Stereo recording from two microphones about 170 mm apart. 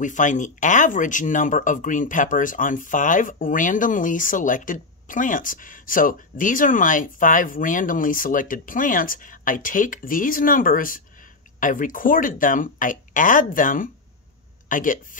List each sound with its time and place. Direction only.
0.0 s speech: 50° left (ahead or behind)